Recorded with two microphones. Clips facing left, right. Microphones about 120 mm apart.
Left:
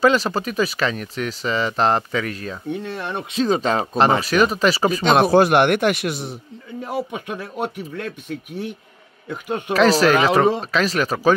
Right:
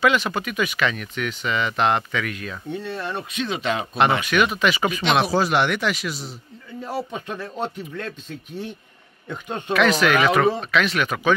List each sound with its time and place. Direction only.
0.0 s speech: 35° left (ahead or behind)
2.7 s speech: 15° left (ahead or behind)
3.3 s speech: 40° left (ahead or behind); by 6.3 s 60° left (ahead or behind)
6.8 s speech: 15° left (ahead or behind)
9.8 s speech: 35° left (ahead or behind)